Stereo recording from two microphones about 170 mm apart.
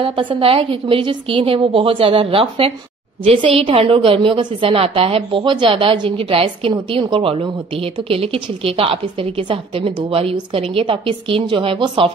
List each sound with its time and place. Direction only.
0.0 s a woman's voice: 30° right (ahead or behind)